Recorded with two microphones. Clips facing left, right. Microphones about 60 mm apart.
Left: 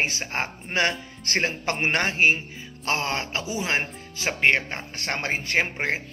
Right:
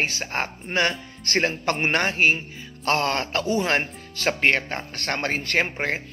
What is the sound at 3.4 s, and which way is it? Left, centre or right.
Speech, right.